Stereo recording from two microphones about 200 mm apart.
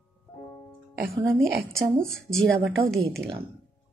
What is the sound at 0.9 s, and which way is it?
Speech, 55° right (ahead or behind).